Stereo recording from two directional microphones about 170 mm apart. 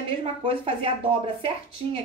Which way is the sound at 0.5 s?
35° right (ahead or behind).